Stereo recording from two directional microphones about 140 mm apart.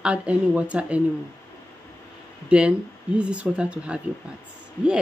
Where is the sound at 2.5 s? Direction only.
5° right (ahead or behind).